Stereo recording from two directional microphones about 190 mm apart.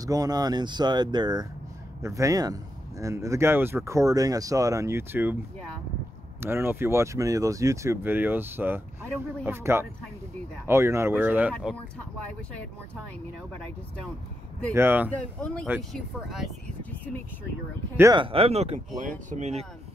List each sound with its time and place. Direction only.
0.0 s speech: 20° right (ahead or behind)
6.4 s speech: 10° right (ahead or behind)
14.7 s speech: 10° right (ahead or behind)
15.4 s speech: 5° left (ahead or behind)
18.1 s speech: 30° right (ahead or behind)